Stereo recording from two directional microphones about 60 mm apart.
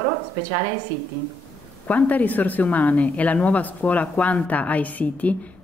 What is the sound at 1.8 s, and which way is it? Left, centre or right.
Speech, left.